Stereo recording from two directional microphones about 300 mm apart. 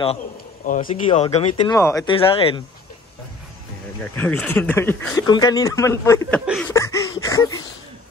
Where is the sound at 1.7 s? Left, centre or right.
Centre.